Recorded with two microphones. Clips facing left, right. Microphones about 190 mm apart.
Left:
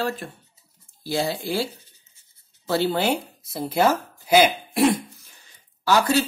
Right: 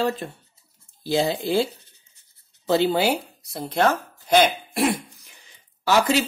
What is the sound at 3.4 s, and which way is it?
Throat clearing, centre (ahead or behind).